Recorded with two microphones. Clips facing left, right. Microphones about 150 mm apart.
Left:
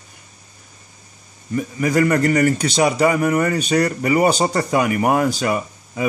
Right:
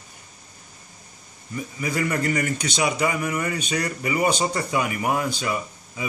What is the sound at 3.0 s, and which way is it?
Speech, 50° left (ahead or behind).